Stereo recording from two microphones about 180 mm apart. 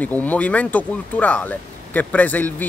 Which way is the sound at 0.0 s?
10° left (ahead or behind).